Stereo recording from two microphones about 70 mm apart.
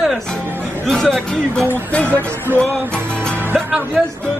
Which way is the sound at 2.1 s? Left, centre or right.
Right.